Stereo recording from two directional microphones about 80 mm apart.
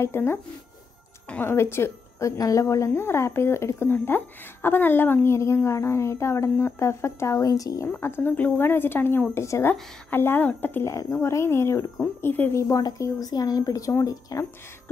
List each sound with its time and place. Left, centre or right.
0.0 s a woman's voice: left
1.4 s a woman's voice: left
2.9 s a woman's voice: left
8.0 s a woman's voice: left
10.8 s a woman's voice: left
12.8 s speech: left